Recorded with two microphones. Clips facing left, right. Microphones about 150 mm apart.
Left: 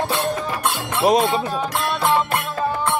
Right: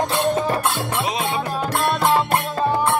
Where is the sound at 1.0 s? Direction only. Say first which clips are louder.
Left 11 dB; 45° left (ahead or behind).